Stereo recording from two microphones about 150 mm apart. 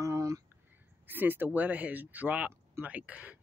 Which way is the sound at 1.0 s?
15° right (ahead or behind).